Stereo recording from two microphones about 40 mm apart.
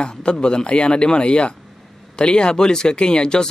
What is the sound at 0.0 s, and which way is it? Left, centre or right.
Speech, left.